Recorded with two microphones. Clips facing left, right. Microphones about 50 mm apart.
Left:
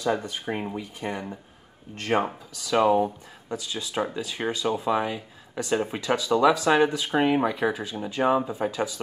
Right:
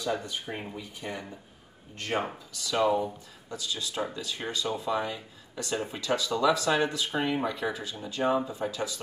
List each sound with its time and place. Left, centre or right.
0.0 s speech: left
2.1 s speech: left
2.7 s speech: left